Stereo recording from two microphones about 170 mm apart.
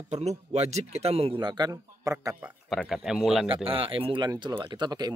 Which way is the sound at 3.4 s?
30° right (ahead or behind).